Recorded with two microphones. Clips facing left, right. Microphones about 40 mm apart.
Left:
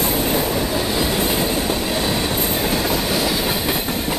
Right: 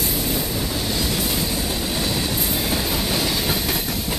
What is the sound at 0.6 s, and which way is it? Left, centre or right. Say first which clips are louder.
Train: left 5 dB; left.